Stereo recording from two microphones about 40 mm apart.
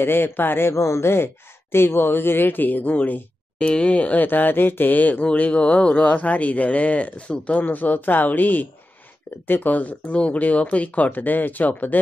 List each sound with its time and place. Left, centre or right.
0.0 s a man's voice: left
6.1 s speech: left
7.6 s speech: left